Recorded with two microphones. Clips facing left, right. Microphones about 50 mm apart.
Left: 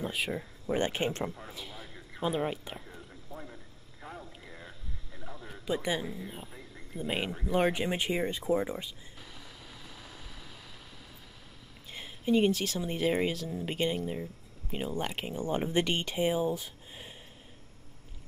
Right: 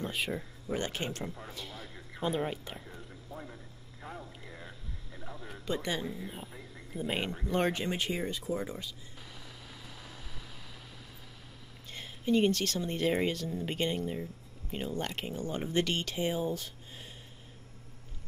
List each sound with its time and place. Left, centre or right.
0.0 s speech: centre
0.7 s speech: left
1.3 s speech: centre
4.0 s a sound: centre
5.2 s radio: centre
5.8 s speech: centre
11.9 s speech: centre